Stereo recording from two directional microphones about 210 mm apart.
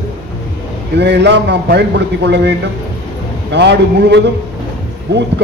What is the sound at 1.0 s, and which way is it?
A man's voice, 55° right (ahead or behind).